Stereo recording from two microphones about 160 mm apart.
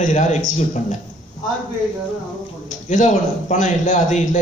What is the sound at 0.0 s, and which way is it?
Speech, 50° left (ahead or behind).